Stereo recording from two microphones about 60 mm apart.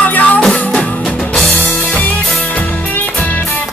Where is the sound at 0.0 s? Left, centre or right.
Left.